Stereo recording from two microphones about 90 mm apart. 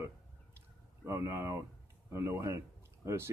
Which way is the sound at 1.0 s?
35° right (ahead or behind).